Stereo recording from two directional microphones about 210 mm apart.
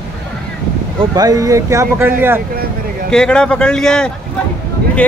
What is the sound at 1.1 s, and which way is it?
Speech, 15° right (ahead or behind).